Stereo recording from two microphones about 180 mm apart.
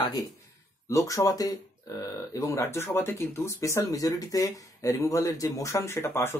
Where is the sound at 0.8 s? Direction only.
20° left (ahead or behind).